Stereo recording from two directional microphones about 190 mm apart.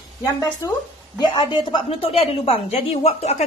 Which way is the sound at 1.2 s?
25° left (ahead or behind).